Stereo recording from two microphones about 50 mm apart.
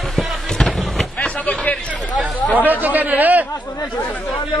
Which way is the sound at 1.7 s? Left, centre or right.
Left.